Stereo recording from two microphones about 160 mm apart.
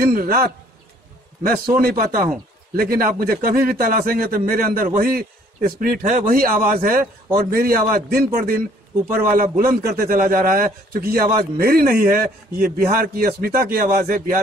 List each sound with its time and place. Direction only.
0.0 s a man's voice: 65° right (ahead or behind)
1.8 s a man's voice: 65° right (ahead or behind)